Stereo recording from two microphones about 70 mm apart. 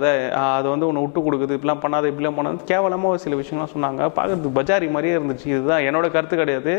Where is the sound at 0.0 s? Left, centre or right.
Left.